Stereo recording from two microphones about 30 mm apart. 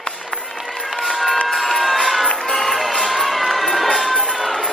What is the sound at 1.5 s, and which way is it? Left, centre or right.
Crowd, centre.